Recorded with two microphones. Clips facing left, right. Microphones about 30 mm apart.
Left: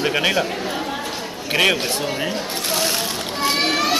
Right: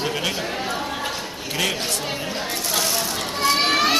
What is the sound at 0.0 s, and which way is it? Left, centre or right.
Speech, left.